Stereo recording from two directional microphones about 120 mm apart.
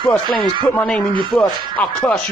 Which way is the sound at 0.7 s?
10° left (ahead or behind).